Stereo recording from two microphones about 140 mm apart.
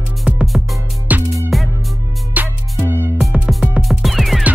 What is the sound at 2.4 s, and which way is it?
Music, 10° right (ahead or behind).